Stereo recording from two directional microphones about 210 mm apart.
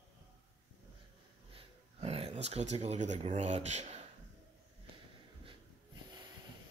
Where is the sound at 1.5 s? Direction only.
30° right (ahead or behind).